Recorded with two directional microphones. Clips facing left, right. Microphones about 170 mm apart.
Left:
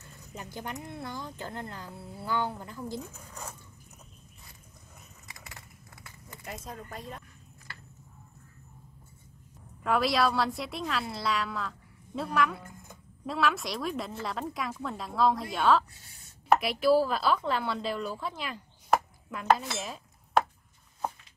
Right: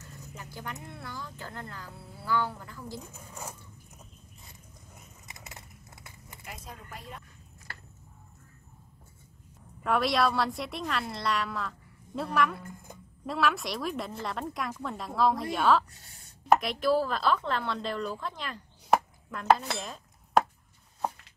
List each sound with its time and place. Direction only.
0.4 s speech: 20° left (ahead or behind)
5.3 s a sound: 20° right (ahead or behind)
6.4 s speech: 40° left (ahead or behind)
9.8 s a woman's voice: centre (ahead or behind)